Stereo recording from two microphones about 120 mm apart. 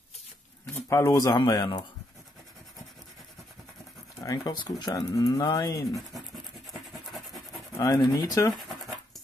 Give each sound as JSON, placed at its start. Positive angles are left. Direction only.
{"t": 0.8, "sound": "speech", "side_deg": 25}
{"t": 4.2, "sound": "speech", "side_deg": 35}
{"t": 6.7, "sound": "rub", "side_deg": 0}
{"t": 7.7, "sound": "speech", "side_deg": 30}